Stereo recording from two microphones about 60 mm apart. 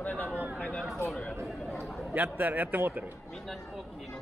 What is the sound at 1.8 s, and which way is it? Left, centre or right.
Chatter, centre.